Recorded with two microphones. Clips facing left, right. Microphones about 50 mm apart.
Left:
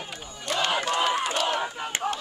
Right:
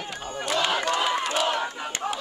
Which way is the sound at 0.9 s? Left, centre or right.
Centre.